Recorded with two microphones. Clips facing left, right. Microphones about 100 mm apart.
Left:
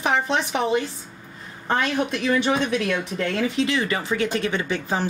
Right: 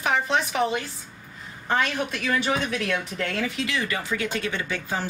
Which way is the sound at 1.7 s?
25° left (ahead or behind).